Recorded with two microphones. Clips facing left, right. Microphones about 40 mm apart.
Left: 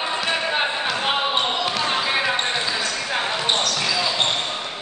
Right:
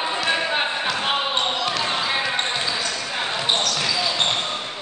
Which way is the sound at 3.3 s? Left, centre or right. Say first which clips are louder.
Even; centre.